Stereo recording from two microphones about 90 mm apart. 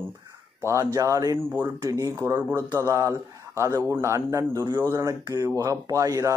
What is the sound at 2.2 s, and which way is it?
Speech, 25° right (ahead or behind).